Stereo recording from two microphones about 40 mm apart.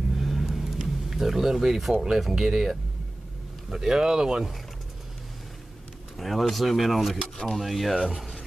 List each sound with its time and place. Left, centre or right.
0.1 s vehicle: centre
1.1 s speech: centre
6.1 s speech: centre